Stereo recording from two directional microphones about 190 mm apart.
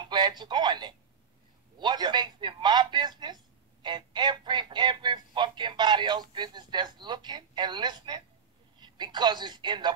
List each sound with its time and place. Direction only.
0.1 s speech: 20° right (ahead or behind)